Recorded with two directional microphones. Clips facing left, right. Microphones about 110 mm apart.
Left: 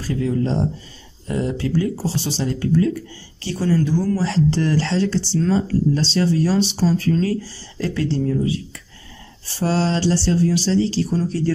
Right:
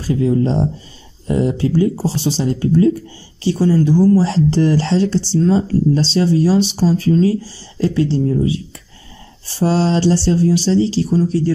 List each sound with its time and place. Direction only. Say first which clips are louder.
0.1 s speech: right 5 dB; 20° right (ahead or behind)
9.6 s speech: right 4 dB; 20° right (ahead or behind)